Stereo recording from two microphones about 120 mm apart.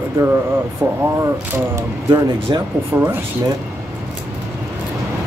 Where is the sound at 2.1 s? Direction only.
40° right (ahead or behind).